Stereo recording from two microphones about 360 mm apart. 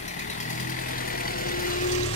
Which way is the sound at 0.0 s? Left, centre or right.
Left.